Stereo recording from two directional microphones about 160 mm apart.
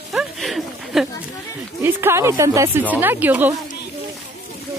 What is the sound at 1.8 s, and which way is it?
Speech, 15° right (ahead or behind).